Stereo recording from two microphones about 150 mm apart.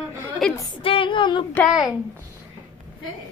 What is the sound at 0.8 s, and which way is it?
Speech, 35° left (ahead or behind).